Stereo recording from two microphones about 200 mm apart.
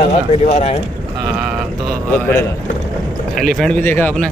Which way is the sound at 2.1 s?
10° left (ahead or behind).